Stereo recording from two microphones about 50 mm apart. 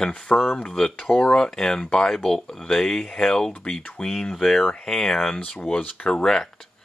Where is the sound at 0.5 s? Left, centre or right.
Centre.